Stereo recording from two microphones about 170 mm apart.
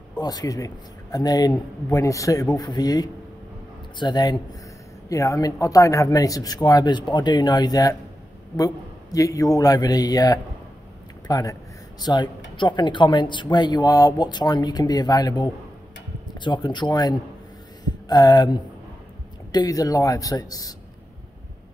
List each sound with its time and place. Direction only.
0.2 s speech: 25° left (ahead or behind)